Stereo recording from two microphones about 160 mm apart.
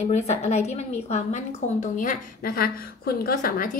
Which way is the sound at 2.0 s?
65° left (ahead or behind).